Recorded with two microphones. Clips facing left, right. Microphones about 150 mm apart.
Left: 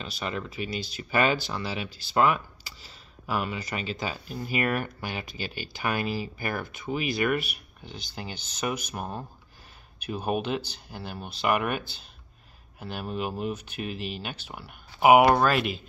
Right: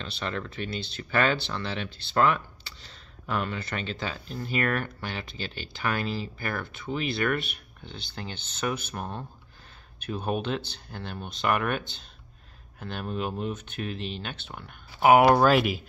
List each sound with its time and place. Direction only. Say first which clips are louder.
0.0 s speech: even; 10° left (ahead or behind)